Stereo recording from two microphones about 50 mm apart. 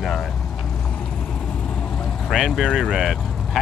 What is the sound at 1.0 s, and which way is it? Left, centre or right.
Vehicle, centre.